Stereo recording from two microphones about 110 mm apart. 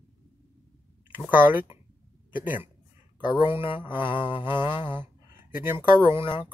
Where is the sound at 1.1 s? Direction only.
15° right (ahead or behind).